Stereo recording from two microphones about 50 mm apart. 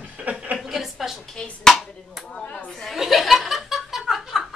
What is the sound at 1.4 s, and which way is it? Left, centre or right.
Speech, centre.